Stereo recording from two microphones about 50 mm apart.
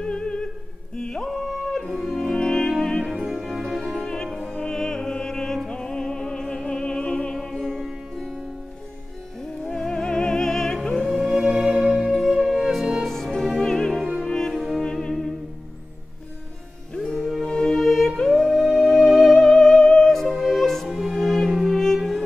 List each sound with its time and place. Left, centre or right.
0.0 s music: centre
0.9 s yodeling: centre
1.3 s music: centre
3.8 s music: centre
5.7 s opera: centre
7.3 s music: centre
11.1 s music: centre
13.0 s music: centre
16.9 s music: centre
17.7 s music: centre
19.3 s music: centre